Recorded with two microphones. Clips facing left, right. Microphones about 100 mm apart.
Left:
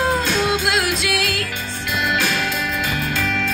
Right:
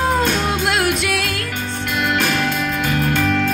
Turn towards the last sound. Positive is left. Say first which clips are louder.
# right 5 dB
turn(degrees=-50)  # may be behind; listen again after turning